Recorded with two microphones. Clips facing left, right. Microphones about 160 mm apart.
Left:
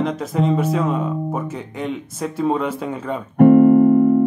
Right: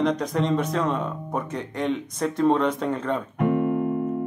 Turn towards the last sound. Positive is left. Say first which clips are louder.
# left 12 dB
turn(degrees=50)  # may be behind; listen again after turning